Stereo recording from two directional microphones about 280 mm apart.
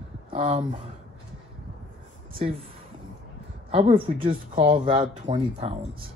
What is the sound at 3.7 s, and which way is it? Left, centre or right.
Speech, centre.